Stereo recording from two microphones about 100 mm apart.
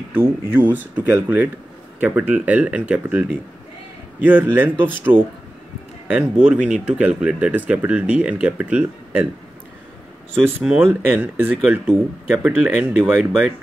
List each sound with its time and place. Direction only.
0.1 s speech: 20° right (ahead or behind)
6.0 s speech: 10° right (ahead or behind)
10.8 s speech: 15° right (ahead or behind)